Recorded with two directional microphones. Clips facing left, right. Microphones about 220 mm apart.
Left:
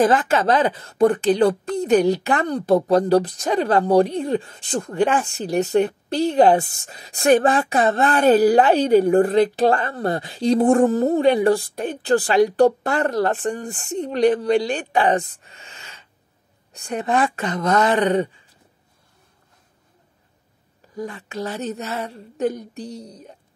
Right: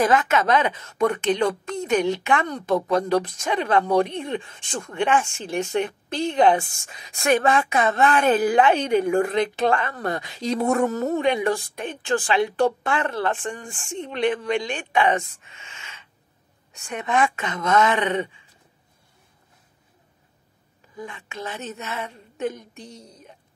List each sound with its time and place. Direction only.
0.0 s speech: 30° left (ahead or behind)
20.9 s speech: 40° left (ahead or behind)